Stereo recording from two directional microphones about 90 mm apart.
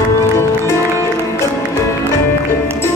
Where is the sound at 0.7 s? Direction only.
35° left (ahead or behind).